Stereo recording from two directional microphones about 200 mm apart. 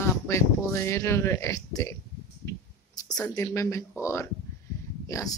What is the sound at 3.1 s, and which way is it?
Speech, 15° left (ahead or behind).